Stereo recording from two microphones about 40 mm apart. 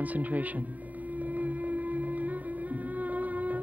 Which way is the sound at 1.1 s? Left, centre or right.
Right.